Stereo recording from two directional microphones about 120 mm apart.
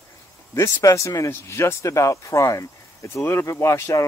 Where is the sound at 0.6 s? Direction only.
25° left (ahead or behind).